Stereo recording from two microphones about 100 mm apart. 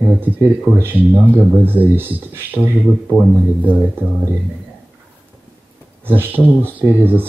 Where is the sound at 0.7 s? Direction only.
20° right (ahead or behind).